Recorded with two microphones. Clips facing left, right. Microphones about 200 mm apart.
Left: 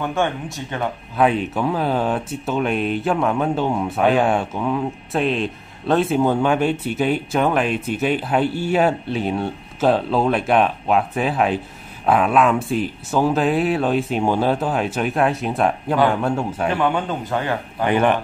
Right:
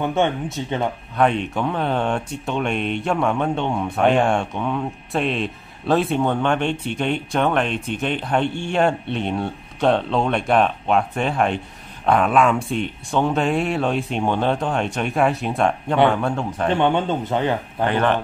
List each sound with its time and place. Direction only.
0.0 s speech: 20° right (ahead or behind)
1.1 s speech: 5° left (ahead or behind)
16.7 s speech: 25° right (ahead or behind)
17.8 s speech: 15° left (ahead or behind)